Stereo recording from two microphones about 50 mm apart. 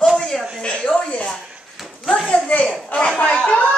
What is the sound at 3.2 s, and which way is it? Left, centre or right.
Chatter, left.